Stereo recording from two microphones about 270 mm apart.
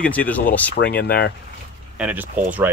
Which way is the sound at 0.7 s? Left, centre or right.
Left.